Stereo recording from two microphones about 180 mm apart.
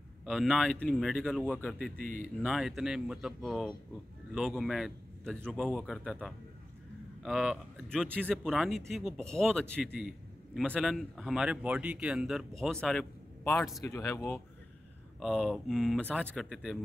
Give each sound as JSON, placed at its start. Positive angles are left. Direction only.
{"t": 0.2, "sound": "speech", "side_deg": 0}
{"t": 2.0, "sound": "speech", "side_deg": -50}
{"t": 2.4, "sound": "speech", "side_deg": 0}
{"t": 15.1, "sound": "speech", "side_deg": 0}